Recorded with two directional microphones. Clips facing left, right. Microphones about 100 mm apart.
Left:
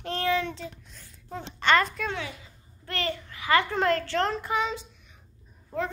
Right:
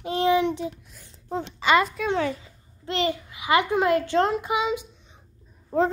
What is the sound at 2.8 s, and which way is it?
A child's voice, 15° right (ahead or behind).